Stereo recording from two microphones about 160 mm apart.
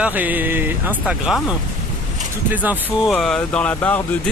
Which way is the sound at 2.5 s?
10° right (ahead or behind).